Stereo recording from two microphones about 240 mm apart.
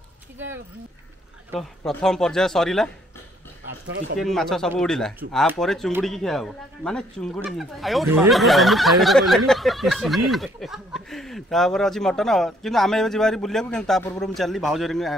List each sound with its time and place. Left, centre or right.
1.9 s speech: centre
3.8 s speech: right
4.2 s speech: centre